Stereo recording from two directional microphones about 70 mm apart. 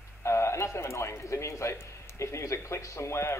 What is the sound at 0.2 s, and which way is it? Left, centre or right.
A man's voice, left.